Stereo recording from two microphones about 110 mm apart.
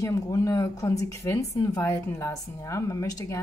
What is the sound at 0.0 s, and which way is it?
Speech, 30° left (ahead or behind).